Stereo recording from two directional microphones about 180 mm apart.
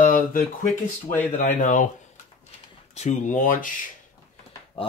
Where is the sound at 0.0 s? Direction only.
50° left (ahead or behind).